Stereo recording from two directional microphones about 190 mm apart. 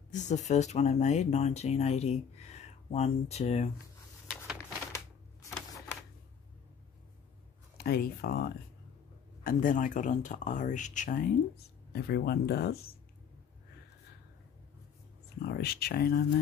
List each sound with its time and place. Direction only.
0.1 s speech: 40° left (ahead or behind)
4.9 s typewriter: 15° left (ahead or behind)
7.7 s speech: 50° left (ahead or behind)
11.9 s speech: 60° left (ahead or behind)
15.4 s speech: 55° left (ahead or behind)